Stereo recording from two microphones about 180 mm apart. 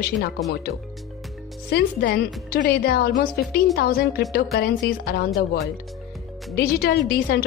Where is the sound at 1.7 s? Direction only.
60° left (ahead or behind).